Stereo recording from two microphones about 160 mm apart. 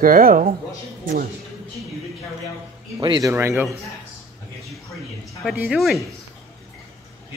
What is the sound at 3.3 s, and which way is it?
Speech, 15° right (ahead or behind).